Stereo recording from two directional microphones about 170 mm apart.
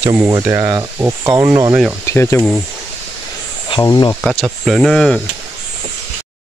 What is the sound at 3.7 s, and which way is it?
Speech, 25° left (ahead or behind).